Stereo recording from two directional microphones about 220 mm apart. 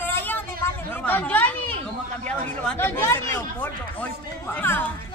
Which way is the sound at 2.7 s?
10° left (ahead or behind).